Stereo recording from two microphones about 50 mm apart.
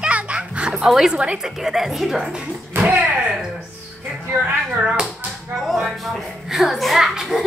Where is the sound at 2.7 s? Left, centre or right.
Right.